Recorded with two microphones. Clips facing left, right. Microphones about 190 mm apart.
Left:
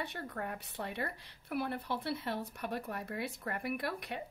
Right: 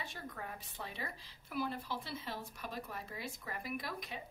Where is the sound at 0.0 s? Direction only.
65° left (ahead or behind).